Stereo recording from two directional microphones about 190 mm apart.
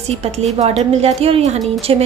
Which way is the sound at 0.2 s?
35° right (ahead or behind).